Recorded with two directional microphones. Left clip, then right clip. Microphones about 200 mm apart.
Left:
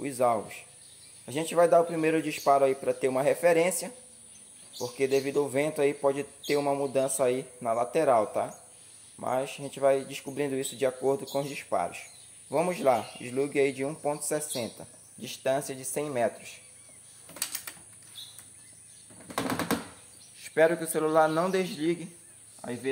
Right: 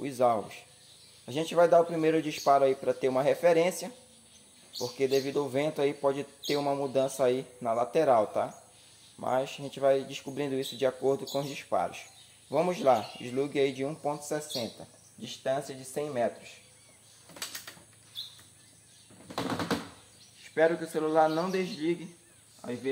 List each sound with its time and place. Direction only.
0.0 s speech: centre (ahead or behind)
14.3 s speech: 20° left (ahead or behind); by 16.3 s 40° left (ahead or behind)
20.4 s speech: 50° left (ahead or behind)